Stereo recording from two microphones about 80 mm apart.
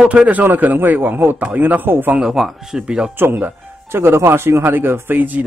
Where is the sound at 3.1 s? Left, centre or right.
Right.